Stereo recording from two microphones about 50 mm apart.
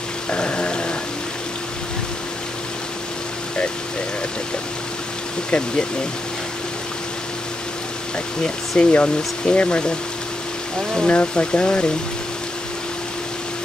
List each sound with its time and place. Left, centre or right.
0.3 s rain: left
8.7 s speech: left
11.1 s speech: left